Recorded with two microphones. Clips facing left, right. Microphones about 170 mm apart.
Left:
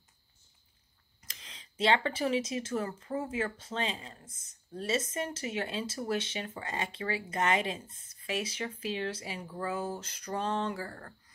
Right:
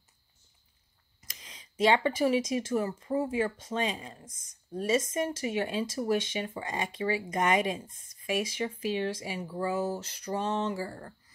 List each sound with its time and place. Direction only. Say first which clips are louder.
1.2 s speech: right 1 dB; 10° right (ahead or behind)